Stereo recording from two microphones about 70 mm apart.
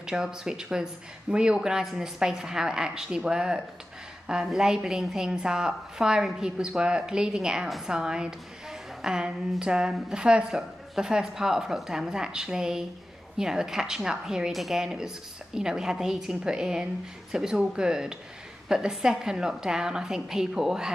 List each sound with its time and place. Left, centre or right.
0.0 s speech: centre